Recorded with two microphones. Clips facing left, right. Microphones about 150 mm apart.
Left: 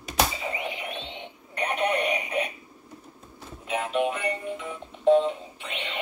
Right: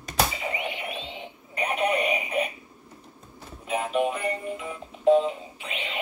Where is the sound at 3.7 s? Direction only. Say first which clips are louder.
Right 1 dB; 5° right (ahead or behind).